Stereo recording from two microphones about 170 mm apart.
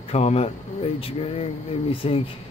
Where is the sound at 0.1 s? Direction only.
35° left (ahead or behind).